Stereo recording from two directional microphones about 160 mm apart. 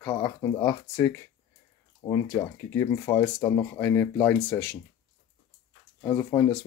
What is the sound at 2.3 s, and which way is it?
Speech, 15° left (ahead or behind).